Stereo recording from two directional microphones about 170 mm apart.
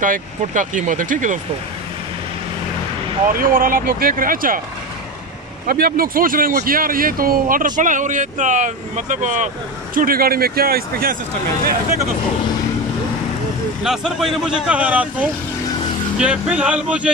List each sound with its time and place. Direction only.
0.0 s speech: 50° right (ahead or behind)
3.3 s speech: 55° right (ahead or behind)
5.7 s speech: 60° right (ahead or behind); by 9.5 s 45° right (ahead or behind)
9.9 s speech: 60° right (ahead or behind)
13.8 s speech: centre (ahead or behind)